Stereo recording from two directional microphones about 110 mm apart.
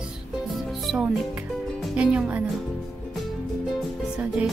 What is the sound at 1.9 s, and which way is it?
Speech, 10° right (ahead or behind).